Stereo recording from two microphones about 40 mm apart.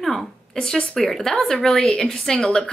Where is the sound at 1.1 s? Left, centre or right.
Centre.